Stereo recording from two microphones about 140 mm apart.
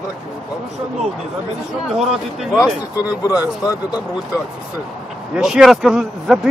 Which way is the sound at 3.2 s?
20° left (ahead or behind).